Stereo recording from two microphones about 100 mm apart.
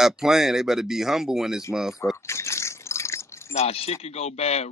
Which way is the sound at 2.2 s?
30° left (ahead or behind).